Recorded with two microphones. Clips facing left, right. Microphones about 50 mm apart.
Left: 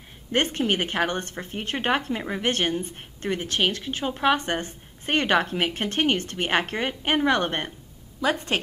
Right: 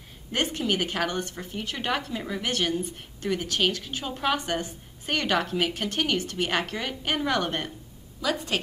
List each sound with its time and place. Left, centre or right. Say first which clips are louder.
0.3 s speech: left 3 dB; left